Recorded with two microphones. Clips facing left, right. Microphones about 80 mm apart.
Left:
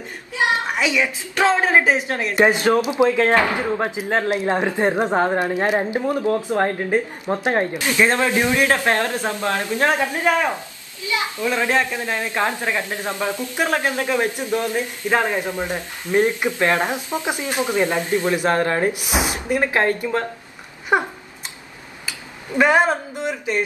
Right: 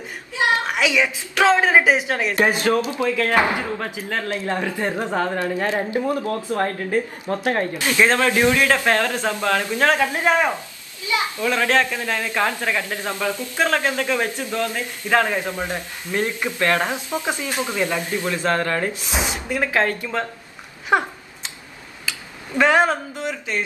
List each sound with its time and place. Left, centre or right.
0.4 s a sound: centre
1.4 s a child's voice: centre
10.0 s speech: right
11.1 s a child's voice: left
22.5 s speech: centre